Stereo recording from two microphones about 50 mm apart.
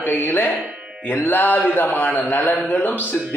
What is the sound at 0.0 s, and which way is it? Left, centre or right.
A man's voice, left.